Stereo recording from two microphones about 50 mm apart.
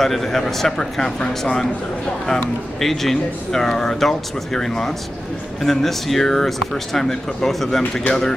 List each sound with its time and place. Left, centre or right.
0.0 s speech: centre
2.8 s speech: centre